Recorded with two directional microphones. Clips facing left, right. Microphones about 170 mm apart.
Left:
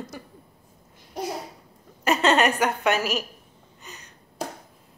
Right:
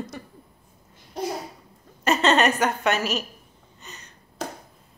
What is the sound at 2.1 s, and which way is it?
Speech, 10° left (ahead or behind).